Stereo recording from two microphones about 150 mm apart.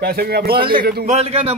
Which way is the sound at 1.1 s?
45° right (ahead or behind).